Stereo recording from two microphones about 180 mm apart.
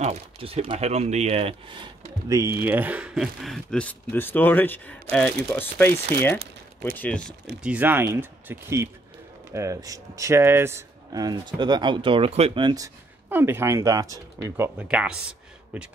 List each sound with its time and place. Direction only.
0.0 s speech: 35° right (ahead or behind); by 7.3 s 5° left (ahead or behind)
7.6 s speech: 10° right (ahead or behind)
14.8 s speech: 5° right (ahead or behind)